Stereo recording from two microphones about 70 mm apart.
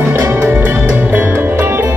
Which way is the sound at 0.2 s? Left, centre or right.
Right.